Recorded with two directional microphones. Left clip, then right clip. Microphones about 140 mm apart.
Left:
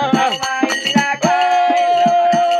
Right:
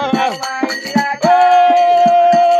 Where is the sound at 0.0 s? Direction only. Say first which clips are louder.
Even; 10° right (ahead or behind).